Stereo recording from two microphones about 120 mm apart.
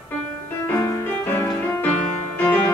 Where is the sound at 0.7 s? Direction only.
20° left (ahead or behind).